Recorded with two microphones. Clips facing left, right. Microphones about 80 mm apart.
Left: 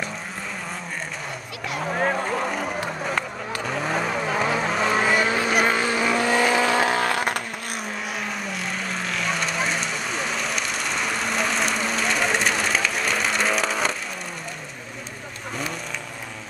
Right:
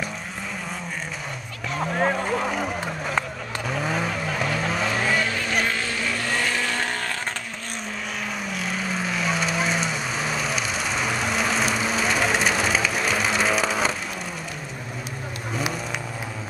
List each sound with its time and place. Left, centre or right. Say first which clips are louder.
1.7 s run: right 1 dB; centre
3.6 s vehicle: even; centre
4.1 s vehicle: left 3 dB; left
4.6 s vehicle: left 2 dB; centre
5.0 s vehicle: left 3 dB; centre
6.9 s vehicle: left 6 dB; left
8.5 s vehicle: right 1 dB; centre